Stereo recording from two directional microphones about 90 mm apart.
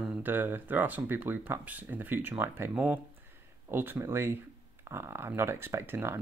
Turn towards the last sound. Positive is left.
turn(degrees=-25)  # may be behind; listen again after turning